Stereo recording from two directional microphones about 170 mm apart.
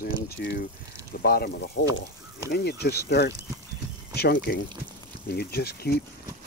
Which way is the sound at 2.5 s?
70° left (ahead or behind).